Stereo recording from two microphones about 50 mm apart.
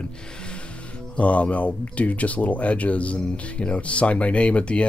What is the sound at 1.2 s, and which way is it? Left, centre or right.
Speech, left.